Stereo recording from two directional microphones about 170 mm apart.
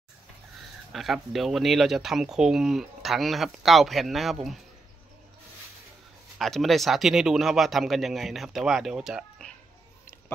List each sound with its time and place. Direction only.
0.9 s speech: centre (ahead or behind)
6.3 s speech: centre (ahead or behind)